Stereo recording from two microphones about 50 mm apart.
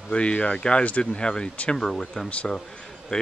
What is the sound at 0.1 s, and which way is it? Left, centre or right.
Speech, left.